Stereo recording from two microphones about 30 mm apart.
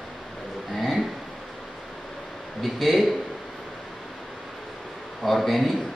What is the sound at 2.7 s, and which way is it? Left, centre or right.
Speech, centre.